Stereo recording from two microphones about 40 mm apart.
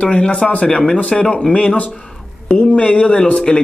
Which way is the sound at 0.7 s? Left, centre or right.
Centre.